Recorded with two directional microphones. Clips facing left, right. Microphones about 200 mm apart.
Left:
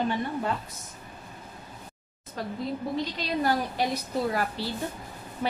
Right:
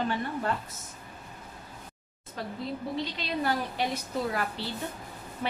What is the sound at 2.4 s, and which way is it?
A woman's voice, 40° left (ahead or behind).